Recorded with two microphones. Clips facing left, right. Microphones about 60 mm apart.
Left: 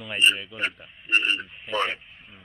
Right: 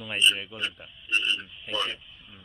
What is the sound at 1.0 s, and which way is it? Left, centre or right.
Speech, left.